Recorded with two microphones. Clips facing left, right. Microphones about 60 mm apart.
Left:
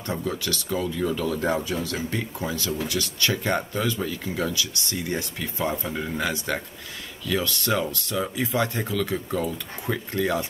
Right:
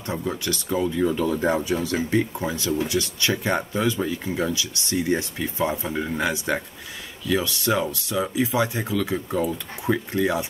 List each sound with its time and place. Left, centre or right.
0.0 s speech: right